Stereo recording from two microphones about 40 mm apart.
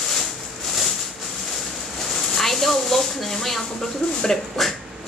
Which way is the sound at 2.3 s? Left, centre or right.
Centre.